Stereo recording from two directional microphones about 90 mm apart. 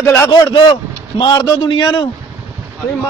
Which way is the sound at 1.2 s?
55° left (ahead or behind).